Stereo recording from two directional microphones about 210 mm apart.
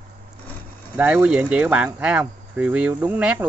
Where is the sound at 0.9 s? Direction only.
5° right (ahead or behind).